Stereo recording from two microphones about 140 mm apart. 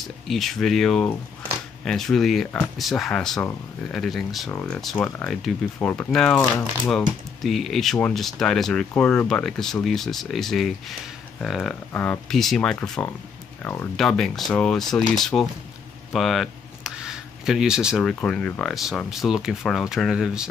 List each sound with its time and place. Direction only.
0.3 s speech: centre (ahead or behind)
4.5 s speech: 15° left (ahead or behind)
11.9 s speech: 10° left (ahead or behind)
12.3 s speech: centre (ahead or behind)